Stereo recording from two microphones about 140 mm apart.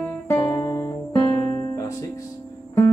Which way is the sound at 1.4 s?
45° right (ahead or behind).